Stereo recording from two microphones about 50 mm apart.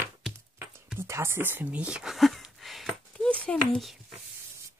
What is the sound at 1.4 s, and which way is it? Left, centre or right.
Speech, right.